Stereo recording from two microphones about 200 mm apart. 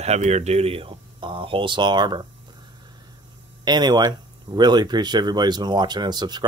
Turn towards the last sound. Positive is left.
turn(degrees=-20)  # may be behind; listen again after turning